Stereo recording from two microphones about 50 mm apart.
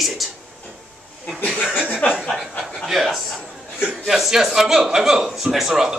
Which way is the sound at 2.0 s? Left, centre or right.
Left.